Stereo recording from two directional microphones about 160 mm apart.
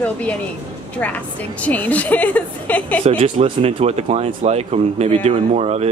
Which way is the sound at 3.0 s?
35° right (ahead or behind).